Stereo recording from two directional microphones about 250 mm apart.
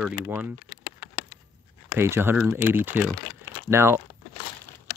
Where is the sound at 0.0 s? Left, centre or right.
Centre.